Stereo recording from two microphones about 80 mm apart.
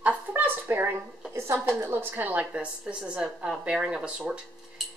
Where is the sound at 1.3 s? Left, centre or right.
Right; by 4.4 s centre.